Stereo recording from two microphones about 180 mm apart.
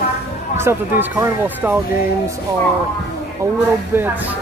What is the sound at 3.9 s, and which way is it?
Speech, 10° right (ahead or behind).